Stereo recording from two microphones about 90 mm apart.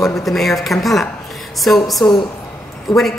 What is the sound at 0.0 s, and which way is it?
A woman's voice, 5° left (ahead or behind).